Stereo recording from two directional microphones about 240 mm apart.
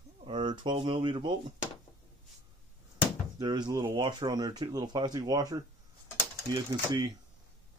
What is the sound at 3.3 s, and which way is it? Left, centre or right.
Speech, centre.